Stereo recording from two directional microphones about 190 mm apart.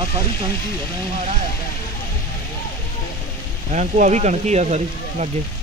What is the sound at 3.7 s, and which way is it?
Speech, 40° right (ahead or behind).